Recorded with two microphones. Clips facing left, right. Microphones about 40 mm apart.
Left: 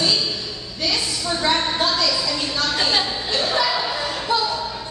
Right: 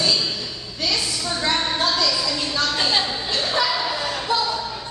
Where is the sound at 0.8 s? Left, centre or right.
Centre.